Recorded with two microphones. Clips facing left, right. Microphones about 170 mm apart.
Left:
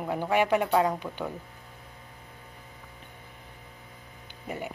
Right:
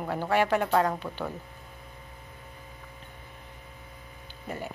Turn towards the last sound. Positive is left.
turn(degrees=15)  # may be behind; listen again after turning